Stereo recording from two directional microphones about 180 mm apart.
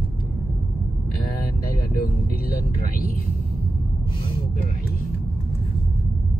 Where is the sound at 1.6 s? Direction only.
55° left (ahead or behind).